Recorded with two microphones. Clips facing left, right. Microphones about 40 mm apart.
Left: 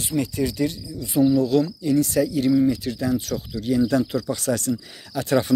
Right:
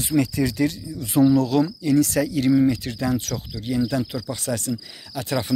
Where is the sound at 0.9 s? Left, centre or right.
Right.